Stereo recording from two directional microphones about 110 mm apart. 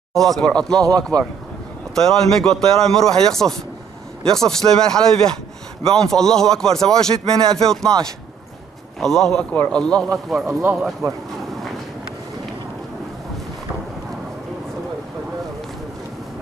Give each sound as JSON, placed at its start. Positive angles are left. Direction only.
{"t": 0.1, "sound": "speech", "side_deg": 5}
{"t": 2.0, "sound": "speech", "side_deg": 5}
{"t": 9.0, "sound": "a man's voice", "side_deg": 5}
{"t": 10.5, "sound": "speech", "side_deg": -20}